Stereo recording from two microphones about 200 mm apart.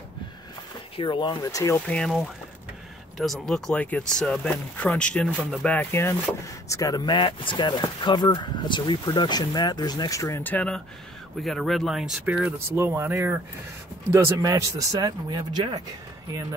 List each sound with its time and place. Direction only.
0.9 s speech: 25° left (ahead or behind); by 15.8 s 20° right (ahead or behind)